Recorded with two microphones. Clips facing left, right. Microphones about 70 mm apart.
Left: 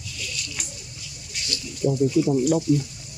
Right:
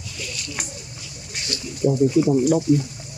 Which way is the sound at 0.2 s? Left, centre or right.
Right.